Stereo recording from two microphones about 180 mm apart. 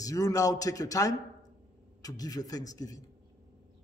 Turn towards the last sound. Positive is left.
turn(degrees=20)  # may be behind; listen again after turning